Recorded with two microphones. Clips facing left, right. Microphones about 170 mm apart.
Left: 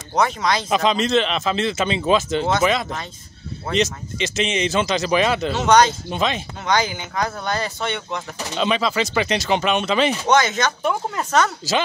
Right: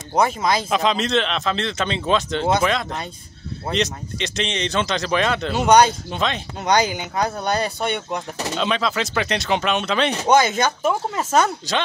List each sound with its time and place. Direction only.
0.1 s speech: 10° right (ahead or behind)
5.5 s speech: 10° right (ahead or behind)
6.0 s speech: 5° left (ahead or behind)
6.6 s speech: 15° right (ahead or behind)
8.5 s speech: centre (ahead or behind)
10.2 s speech: 10° right (ahead or behind)